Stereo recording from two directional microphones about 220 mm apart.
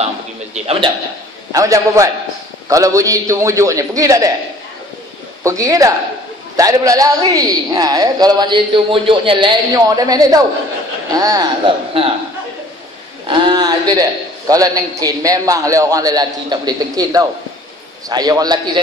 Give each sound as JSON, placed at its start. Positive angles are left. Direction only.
{"t": 1.5, "sound": "a man's voice", "side_deg": -15}
{"t": 5.4, "sound": "a man's voice", "side_deg": -15}
{"t": 13.3, "sound": "a man's voice", "side_deg": -20}